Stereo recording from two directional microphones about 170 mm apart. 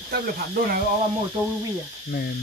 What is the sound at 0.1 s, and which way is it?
Speech, 65° right (ahead or behind).